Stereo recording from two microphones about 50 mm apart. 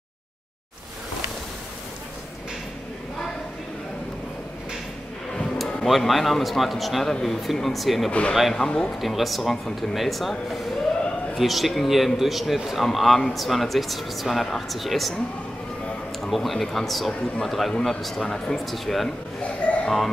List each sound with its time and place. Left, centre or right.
5.9 s speech: centre
8.6 s speech: centre
9.0 s speech: centre
11.3 s speech: centre
16.2 s speech: centre
18.7 s speech: centre
19.4 s a man's voice: left